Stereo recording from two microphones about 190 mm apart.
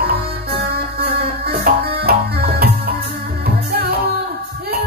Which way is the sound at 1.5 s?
55° right (ahead or behind).